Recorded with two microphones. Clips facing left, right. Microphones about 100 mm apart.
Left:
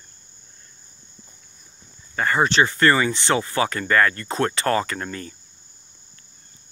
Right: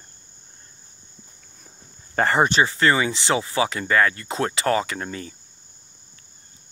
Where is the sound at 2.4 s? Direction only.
10° right (ahead or behind).